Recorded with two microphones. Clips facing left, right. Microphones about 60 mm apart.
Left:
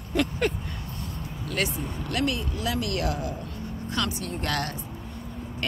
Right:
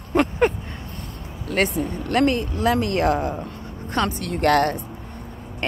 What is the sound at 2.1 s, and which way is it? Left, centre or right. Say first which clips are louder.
Speech: right 8 dB; right.